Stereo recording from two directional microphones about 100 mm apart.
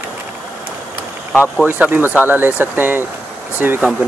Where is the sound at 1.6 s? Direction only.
15° right (ahead or behind).